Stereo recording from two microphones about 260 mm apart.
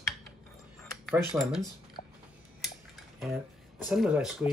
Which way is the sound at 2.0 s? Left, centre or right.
Left.